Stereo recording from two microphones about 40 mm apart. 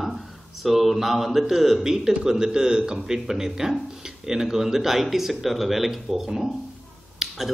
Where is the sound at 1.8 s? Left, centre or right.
Centre.